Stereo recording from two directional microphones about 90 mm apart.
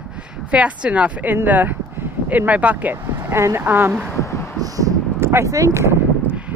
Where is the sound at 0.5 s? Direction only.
15° right (ahead or behind).